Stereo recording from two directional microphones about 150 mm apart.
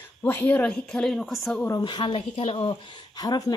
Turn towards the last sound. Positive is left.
turn(degrees=25)  # may be behind; listen again after turning